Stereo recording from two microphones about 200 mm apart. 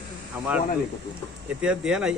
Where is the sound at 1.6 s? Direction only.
5° right (ahead or behind).